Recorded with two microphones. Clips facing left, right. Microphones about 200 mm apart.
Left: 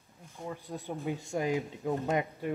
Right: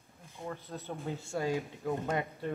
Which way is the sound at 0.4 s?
15° left (ahead or behind).